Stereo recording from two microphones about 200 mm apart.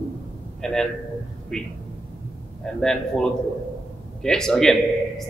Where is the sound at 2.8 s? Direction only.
5° left (ahead or behind).